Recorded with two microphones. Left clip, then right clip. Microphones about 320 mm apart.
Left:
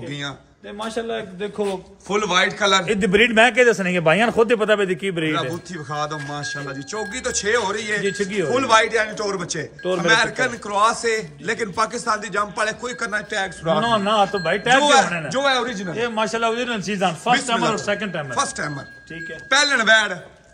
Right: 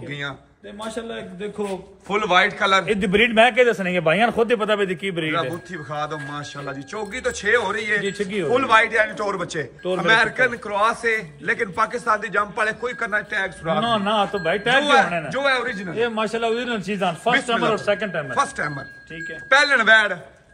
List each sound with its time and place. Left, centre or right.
0.7 s a man's voice: left
2.0 s a man's voice: centre
2.9 s a man's voice: left
5.3 s a man's voice: centre
8.0 s a man's voice: left
8.5 s a man's voice: centre
13.8 s speech: left
14.8 s a man's voice: centre
16.0 s a man's voice: left
17.3 s a man's voice: centre
17.7 s a man's voice: left
18.3 s a man's voice: centre